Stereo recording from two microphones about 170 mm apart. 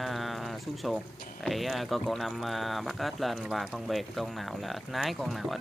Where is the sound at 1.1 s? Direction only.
55° left (ahead or behind).